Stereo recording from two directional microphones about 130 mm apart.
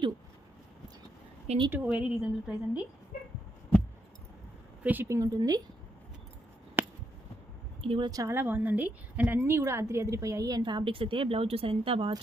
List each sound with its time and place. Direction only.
1.7 s a woman's voice: 10° right (ahead or behind)
4.8 s a woman's voice: 20° right (ahead or behind)
7.8 s speech: 45° right (ahead or behind)
8.1 s a woman's voice: 20° right (ahead or behind); by 12.1 s 45° right (ahead or behind)